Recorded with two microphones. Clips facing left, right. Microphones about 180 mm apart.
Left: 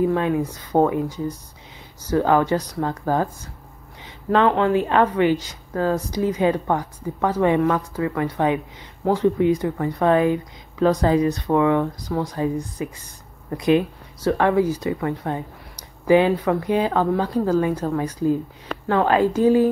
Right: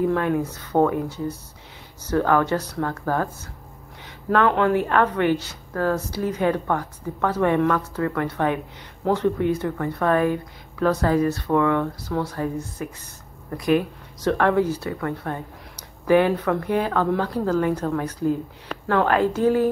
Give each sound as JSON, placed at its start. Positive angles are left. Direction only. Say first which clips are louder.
{"t": 0.0, "sound": "a woman's voice", "louder": "left 1 dB", "side_deg": 5}
{"t": 4.5, "sound": "a woman's voice", "louder": "left 1 dB", "side_deg": 5}
{"t": 14.2, "sound": "a woman's voice", "louder": "left 1 dB", "side_deg": 10}